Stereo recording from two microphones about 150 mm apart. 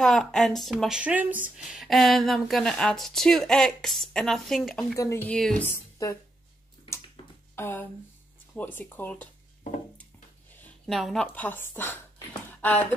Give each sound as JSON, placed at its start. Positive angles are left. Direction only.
{"t": 0.0, "sound": "a woman's voice", "side_deg": 0}
{"t": 4.9, "sound": "speech", "side_deg": 20}
{"t": 5.7, "sound": "a woman's voice", "side_deg": 20}
{"t": 7.5, "sound": "speech", "side_deg": 15}
{"t": 10.9, "sound": "a woman's voice", "side_deg": 0}
{"t": 11.3, "sound": "speech", "side_deg": 15}